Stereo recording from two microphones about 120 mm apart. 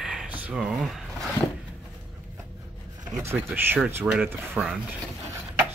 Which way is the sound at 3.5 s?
15° right (ahead or behind).